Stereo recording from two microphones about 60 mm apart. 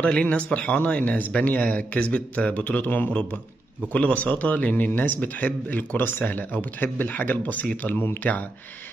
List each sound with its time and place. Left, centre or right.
0.0 s speech: centre